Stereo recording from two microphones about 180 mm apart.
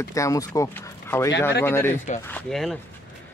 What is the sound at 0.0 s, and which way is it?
Speech, 15° left (ahead or behind).